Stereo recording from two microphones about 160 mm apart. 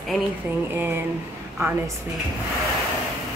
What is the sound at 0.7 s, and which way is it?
Speech, 15° right (ahead or behind).